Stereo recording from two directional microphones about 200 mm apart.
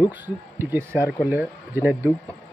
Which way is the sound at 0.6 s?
10° right (ahead or behind).